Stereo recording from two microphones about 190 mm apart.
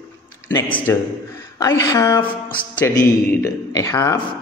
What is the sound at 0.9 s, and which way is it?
A man's voice, 15° left (ahead or behind).